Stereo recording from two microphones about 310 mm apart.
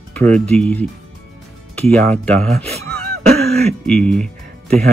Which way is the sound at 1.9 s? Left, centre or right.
Centre.